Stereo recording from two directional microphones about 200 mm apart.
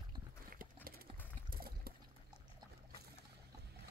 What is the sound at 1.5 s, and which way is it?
Water, 50° right (ahead or behind).